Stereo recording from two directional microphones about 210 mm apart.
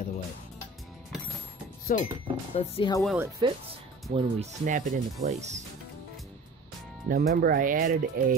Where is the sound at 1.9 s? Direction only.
40° left (ahead or behind).